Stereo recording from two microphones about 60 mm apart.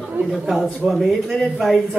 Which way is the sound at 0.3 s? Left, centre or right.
Centre.